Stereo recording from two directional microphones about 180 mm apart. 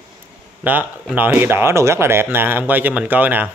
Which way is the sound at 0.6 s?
10° right (ahead or behind).